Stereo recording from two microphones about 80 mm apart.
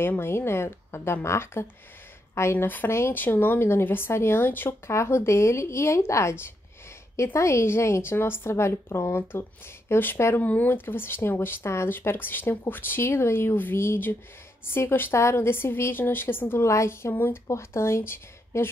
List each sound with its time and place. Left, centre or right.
0.2 s speech: left